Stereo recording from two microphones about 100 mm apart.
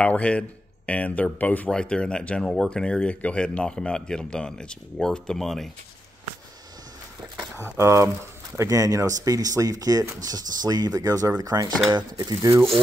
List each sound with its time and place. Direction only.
0.0 s speech: 10° left (ahead or behind)
7.3 s speech: 25° right (ahead or behind)